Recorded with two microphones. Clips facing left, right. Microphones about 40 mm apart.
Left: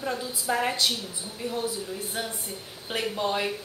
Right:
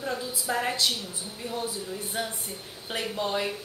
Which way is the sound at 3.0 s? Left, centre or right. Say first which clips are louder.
Left 2 dB; centre.